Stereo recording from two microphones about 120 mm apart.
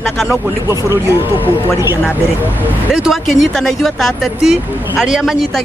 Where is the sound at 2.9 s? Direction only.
Centre (ahead or behind).